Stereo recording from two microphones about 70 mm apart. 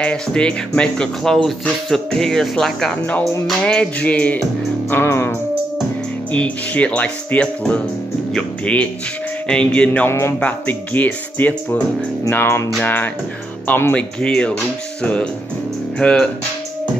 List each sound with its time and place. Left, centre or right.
0.0 s speech: centre
3.6 s speech: centre
4.9 s music: left
6.3 s speech: centre
10.0 s music: left
10.4 s speech: left
12.3 s music: left
12.8 s speech: left
13.7 s music: left
13.9 s speech: centre
16.0 s speech: centre